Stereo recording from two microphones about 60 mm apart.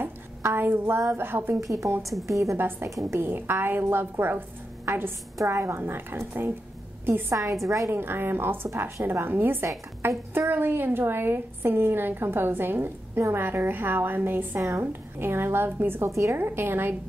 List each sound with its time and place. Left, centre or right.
0.4 s a woman's voice: right
1.6 s a woman's voice: right
2.5 s a woman's voice: right
5.4 s a woman's voice: right
5.8 s a woman's voice: right
7.1 s a woman's voice: right
7.6 s a woman's voice: right
7.9 s a woman's voice: right
14.6 s a woman's voice: right
14.9 s a woman's voice: right